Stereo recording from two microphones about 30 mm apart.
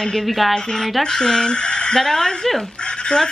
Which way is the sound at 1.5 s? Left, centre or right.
Left.